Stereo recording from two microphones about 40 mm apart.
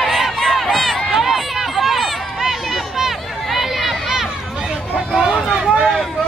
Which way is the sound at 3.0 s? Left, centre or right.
Centre.